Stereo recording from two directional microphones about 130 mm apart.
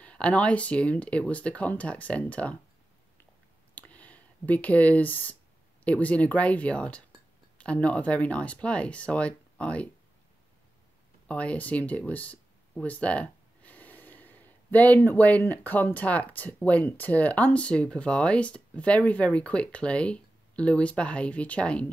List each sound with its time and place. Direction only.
0.0 s speech: 10° left (ahead or behind)
3.7 s a sound: 10° left (ahead or behind)
5.9 s speech: 10° left (ahead or behind)
11.2 s speech: 10° left (ahead or behind)